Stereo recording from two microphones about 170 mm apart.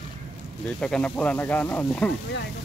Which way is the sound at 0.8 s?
5° left (ahead or behind).